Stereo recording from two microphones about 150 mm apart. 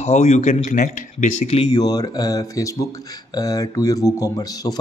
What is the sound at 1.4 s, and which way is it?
Speech, 40° left (ahead or behind).